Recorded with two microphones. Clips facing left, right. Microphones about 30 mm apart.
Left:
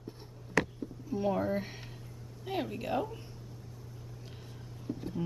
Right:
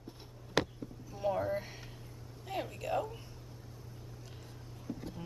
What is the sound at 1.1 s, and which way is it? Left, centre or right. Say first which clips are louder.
Speech: left 3 dB; centre.